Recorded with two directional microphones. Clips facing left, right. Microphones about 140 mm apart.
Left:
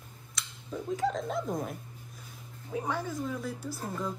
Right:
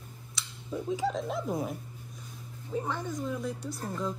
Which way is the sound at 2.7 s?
10° left (ahead or behind).